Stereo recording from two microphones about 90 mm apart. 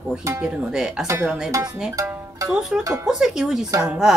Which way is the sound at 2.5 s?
5° right (ahead or behind).